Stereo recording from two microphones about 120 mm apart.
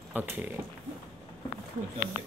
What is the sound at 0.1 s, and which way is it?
Speech, 15° right (ahead or behind).